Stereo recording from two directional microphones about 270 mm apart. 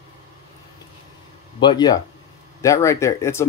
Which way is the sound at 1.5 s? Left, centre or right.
Centre.